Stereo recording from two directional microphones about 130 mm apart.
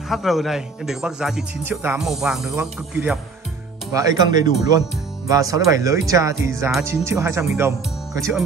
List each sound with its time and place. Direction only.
0.1 s speech: centre (ahead or behind)
1.6 s music: 15° right (ahead or behind)
2.0 s speech: 5° right (ahead or behind)
3.9 s speech: 30° right (ahead or behind)